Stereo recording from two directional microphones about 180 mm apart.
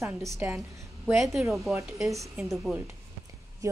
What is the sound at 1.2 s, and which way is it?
Speech, centre (ahead or behind).